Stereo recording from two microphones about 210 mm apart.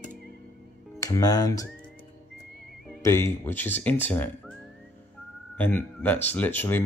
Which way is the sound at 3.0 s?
10° left (ahead or behind).